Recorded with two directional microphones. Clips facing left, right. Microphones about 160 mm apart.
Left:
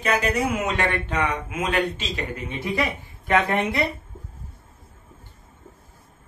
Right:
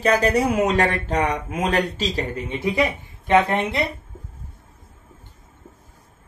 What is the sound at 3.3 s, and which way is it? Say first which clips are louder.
Speech: right 3 dB; 20° right (ahead or behind).